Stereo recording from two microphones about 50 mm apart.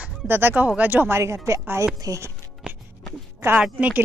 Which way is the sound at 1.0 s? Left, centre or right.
Right.